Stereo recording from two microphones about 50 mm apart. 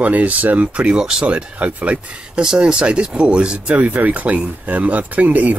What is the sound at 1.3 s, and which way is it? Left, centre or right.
Speech, right.